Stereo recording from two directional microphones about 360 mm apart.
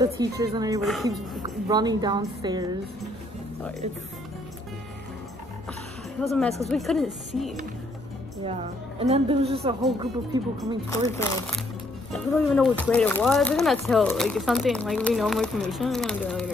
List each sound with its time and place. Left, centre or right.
0.0 s speech: centre
1.4 s speech: centre
6.2 s speech: centre
9.0 s speech: centre
10.9 s speech: centre